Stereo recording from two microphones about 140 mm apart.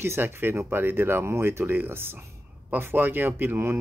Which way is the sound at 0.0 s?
15° right (ahead or behind).